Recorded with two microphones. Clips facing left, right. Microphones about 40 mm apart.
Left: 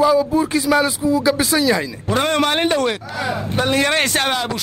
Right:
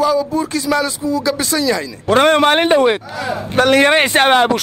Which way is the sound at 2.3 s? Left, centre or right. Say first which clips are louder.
Right 5 dB; right.